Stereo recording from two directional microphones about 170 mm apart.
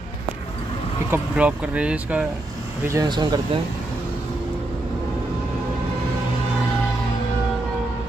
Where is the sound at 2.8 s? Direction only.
20° right (ahead or behind).